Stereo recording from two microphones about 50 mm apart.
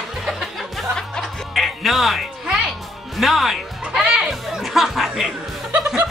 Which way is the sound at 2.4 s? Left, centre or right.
Centre.